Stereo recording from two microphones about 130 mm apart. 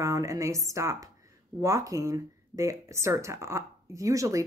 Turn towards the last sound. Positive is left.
turn(degrees=-25)  # may be behind; listen again after turning